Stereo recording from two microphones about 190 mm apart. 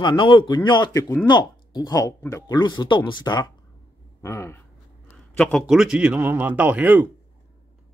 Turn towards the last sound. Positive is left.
turn(degrees=-10)  # may be behind; listen again after turning